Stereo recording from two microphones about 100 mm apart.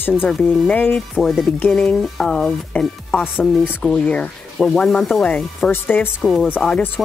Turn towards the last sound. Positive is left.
turn(degrees=15)  # may be behind; listen again after turning